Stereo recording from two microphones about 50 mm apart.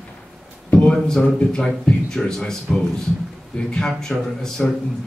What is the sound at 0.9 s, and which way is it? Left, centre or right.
A man's voice, centre.